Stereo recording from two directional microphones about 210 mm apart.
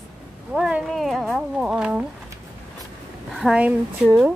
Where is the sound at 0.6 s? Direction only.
5° right (ahead or behind).